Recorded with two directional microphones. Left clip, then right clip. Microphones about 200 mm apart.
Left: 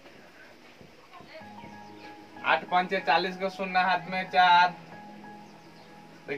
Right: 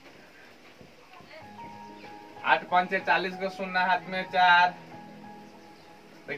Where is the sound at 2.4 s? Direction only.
5° right (ahead or behind).